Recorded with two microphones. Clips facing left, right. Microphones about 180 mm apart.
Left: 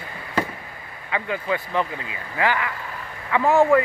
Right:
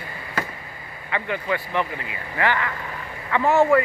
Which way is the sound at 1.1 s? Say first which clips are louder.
Even; 10° left (ahead or behind).